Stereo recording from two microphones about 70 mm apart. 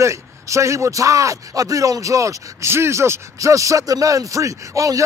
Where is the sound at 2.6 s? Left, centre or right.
Right.